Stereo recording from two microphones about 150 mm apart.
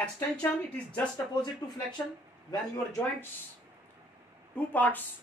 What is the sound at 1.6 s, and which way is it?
Speech, 25° left (ahead or behind).